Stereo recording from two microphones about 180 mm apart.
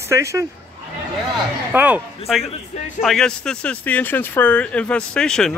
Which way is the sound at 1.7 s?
10° right (ahead or behind).